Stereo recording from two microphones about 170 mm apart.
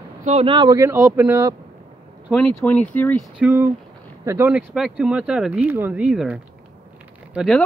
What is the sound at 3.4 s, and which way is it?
Speech, 15° right (ahead or behind).